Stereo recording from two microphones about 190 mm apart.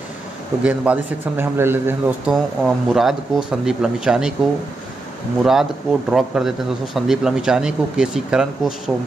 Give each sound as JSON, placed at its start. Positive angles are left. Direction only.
{"t": 0.7, "sound": "speech", "side_deg": -5}
{"t": 5.4, "sound": "speech", "side_deg": 0}